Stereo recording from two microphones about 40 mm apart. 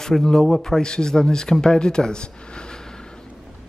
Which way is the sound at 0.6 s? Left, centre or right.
Centre.